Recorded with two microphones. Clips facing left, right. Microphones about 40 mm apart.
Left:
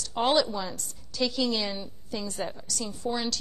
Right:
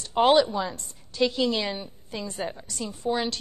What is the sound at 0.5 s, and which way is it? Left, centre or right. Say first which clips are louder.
A woman's voice: right 4 dB; right.